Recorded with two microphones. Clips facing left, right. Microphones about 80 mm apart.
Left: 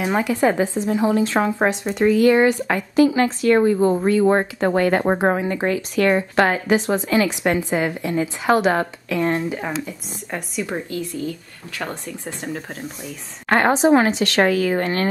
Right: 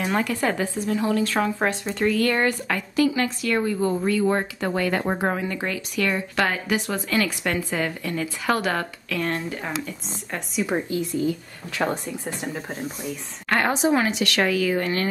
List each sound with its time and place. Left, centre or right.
0.0 s a woman's voice: centre
10.7 s speech: centre
13.5 s speech: left